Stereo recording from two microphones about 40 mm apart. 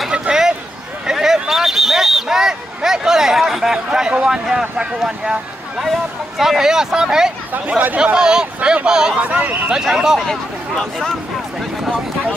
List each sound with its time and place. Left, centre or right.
0.3 s a sound: centre
5.0 s speech: centre
5.8 s speech: centre
7.5 s speech: right
8.0 s speech: right
9.2 s speech: right
9.8 s speech: centre
10.2 s speech: centre